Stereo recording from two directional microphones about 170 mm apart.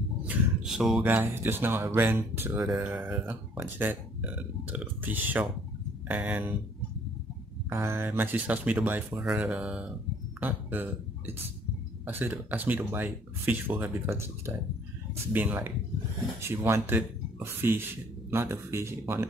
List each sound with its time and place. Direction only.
0.3 s a sound: centre (ahead or behind)
1.0 s speech: 10° right (ahead or behind)
2.6 s speech: centre (ahead or behind)
7.7 s speech: 15° right (ahead or behind)